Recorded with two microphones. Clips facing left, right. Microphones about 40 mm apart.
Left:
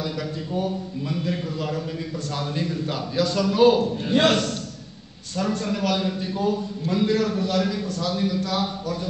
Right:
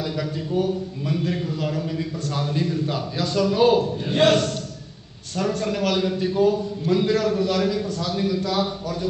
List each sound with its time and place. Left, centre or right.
2.7 s a man's voice: centre
3.7 s a man's voice: right
5.3 s a man's voice: right
5.9 s a man's voice: centre